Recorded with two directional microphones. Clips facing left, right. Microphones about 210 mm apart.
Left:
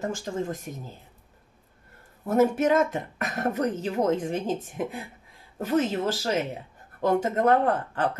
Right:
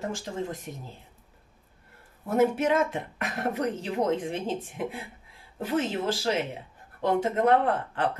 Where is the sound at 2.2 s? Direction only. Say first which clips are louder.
Left 2 dB; 45° left (ahead or behind).